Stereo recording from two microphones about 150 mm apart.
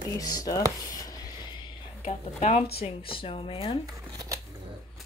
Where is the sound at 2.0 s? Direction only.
45° left (ahead or behind).